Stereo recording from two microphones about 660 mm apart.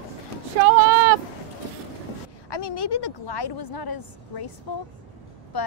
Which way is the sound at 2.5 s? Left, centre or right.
Left.